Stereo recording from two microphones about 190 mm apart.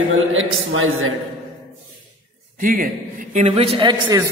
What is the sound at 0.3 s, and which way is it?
Speech, 90° right.